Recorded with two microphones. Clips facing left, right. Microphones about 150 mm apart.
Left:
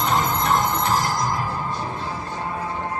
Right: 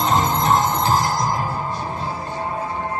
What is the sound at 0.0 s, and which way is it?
Music, 30° right (ahead or behind).